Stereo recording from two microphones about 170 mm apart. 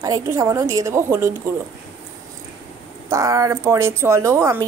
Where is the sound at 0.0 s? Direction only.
20° right (ahead or behind).